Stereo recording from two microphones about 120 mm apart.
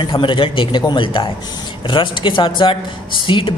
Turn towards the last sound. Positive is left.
turn(degrees=45)  # may be behind; listen again after turning